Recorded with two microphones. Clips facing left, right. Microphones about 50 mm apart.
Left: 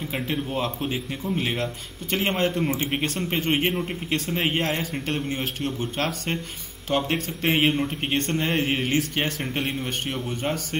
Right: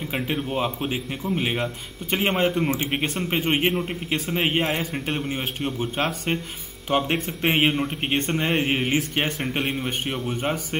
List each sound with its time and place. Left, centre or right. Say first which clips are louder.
0.1 s speech: right 2 dB; centre